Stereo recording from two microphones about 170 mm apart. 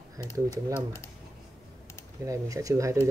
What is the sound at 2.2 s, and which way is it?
Speech, 20° right (ahead or behind).